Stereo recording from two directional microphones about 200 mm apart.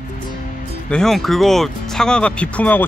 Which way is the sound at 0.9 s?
Centre (ahead or behind).